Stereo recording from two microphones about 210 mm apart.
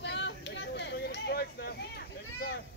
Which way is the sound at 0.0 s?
55° left (ahead or behind).